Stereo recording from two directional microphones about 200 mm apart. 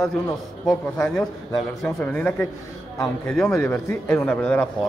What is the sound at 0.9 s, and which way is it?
A man's voice, 5° left (ahead or behind).